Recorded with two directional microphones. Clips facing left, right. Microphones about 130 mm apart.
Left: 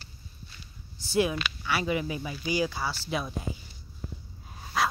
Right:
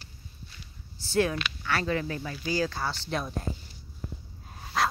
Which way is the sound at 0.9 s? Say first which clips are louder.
Even; 15° left (ahead or behind).